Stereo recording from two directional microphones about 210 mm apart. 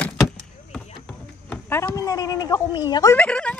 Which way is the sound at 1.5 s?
10° left (ahead or behind).